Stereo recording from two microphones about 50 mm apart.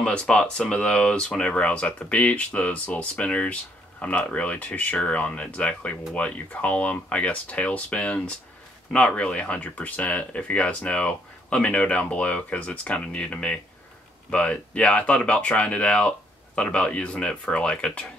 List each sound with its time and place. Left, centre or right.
0.0 s speech: left